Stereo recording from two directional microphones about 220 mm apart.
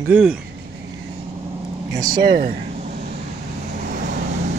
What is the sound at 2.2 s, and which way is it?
Speech, 40° right (ahead or behind).